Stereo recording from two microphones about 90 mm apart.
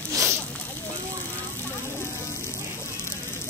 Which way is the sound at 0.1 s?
35° right (ahead or behind).